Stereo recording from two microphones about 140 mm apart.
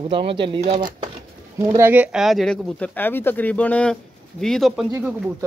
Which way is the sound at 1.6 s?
15° right (ahead or behind).